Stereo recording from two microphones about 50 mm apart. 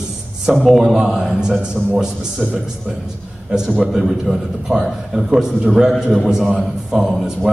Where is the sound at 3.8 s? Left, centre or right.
Centre.